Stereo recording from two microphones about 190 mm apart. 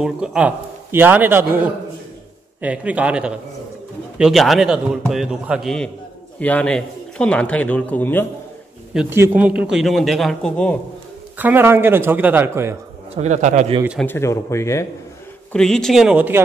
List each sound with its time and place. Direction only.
0.0 s a man's voice: 5° right (ahead or behind)
8.9 s a man's voice: 10° right (ahead or behind); by 10.8 s 5° left (ahead or behind)
11.3 s speech: 10° right (ahead or behind)
13.1 s a man's voice: 35° right (ahead or behind)
14.0 s speech: 15° left (ahead or behind)
15.5 s a man's voice: 5° left (ahead or behind)